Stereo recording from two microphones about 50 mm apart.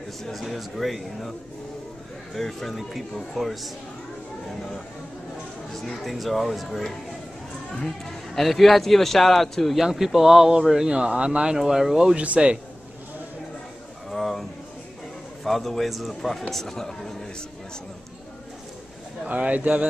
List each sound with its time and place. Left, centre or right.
0.2 s a man's voice: centre
2.3 s a man's voice: centre
5.7 s a man's voice: centre
7.7 s speech: centre
8.4 s a man's voice: centre
10.9 s speech: right
11.5 s speech: centre
12.2 s speech: right
14.1 s a sound: centre
15.4 s a man's voice: centre
19.2 s speech: right